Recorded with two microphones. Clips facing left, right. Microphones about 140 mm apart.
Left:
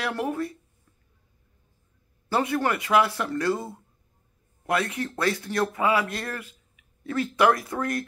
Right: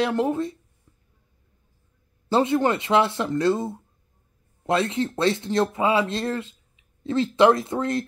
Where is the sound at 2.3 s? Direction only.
25° right (ahead or behind).